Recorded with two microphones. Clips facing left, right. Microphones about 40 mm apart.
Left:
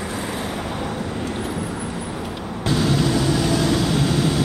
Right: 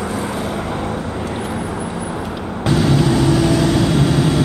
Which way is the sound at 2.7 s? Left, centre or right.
Centre.